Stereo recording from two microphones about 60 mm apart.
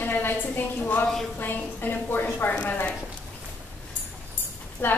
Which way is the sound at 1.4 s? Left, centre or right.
Left.